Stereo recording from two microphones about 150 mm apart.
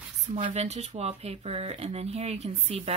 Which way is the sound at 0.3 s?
50° right (ahead or behind).